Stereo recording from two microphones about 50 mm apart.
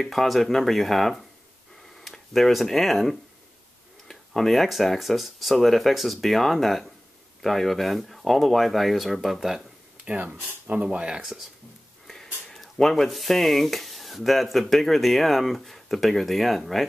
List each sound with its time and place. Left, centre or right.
0.0 s speech: centre
10.0 s speech: right
12.1 s speech: centre